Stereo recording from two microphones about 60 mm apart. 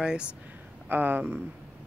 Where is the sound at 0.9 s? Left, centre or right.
Right.